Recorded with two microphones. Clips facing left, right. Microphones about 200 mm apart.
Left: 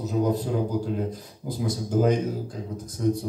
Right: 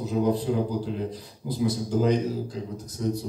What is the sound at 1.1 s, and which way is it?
Speech, 50° left (ahead or behind).